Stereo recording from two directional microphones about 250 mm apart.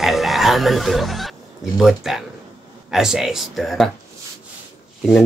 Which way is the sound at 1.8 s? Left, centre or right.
Centre.